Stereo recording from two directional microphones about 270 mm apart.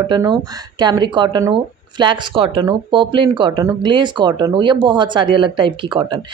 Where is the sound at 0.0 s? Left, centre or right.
Centre.